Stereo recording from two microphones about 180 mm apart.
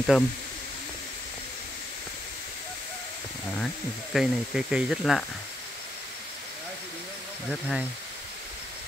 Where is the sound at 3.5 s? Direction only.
Centre (ahead or behind).